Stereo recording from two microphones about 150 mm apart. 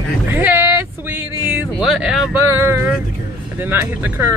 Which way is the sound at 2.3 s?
15° right (ahead or behind).